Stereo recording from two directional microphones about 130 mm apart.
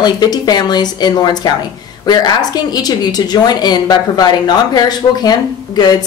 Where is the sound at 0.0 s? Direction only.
30° left (ahead or behind).